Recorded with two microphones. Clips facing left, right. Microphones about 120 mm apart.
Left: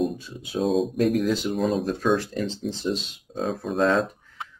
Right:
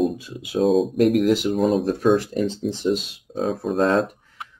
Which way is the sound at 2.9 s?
Centre (ahead or behind).